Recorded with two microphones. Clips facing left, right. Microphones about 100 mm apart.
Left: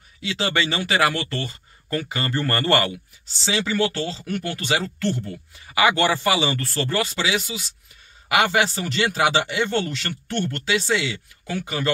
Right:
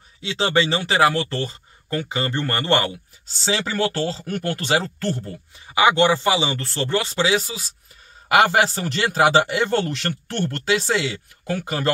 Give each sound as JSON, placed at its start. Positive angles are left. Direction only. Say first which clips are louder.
{"t": 0.2, "sound": "speech", "louder": "right 3 dB", "side_deg": -30}
{"t": 3.4, "sound": "a man's voice", "louder": "even", "side_deg": -45}
{"t": 5.7, "sound": "a man's voice", "louder": "right 3 dB", "side_deg": -25}